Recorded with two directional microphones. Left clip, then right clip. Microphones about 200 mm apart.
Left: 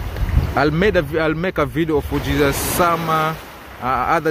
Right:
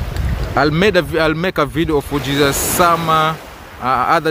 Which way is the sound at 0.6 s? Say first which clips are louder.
Right 3 dB; 10° right (ahead or behind).